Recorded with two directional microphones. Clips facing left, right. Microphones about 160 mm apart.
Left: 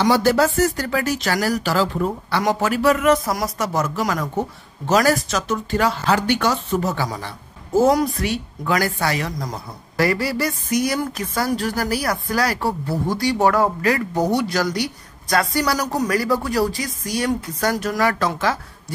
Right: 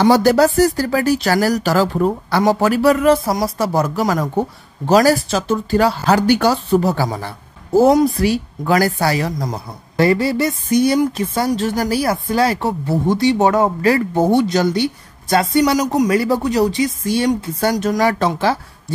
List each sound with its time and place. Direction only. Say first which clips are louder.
0.0 s speech: right 5 dB; 40° right (ahead or behind)
7.8 s speech: right 5 dB; 30° right (ahead or behind)
9.5 s a woman's voice: right 4 dB; 25° right (ahead or behind)
15.8 s speech: right 6 dB; 15° right (ahead or behind)
16.1 s a woman's voice: right 4 dB; 25° right (ahead or behind)